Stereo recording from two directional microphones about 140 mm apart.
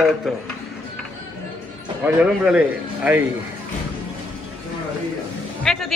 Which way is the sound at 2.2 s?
5° right (ahead or behind).